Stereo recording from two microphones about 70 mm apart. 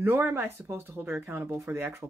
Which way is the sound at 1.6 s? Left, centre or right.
Right.